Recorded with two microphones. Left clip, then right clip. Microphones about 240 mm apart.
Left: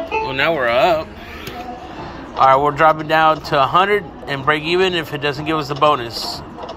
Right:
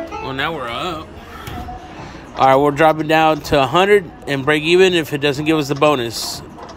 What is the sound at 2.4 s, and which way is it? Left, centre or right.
Speech, right.